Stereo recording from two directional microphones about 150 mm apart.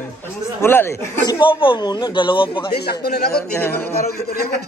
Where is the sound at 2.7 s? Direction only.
90° left.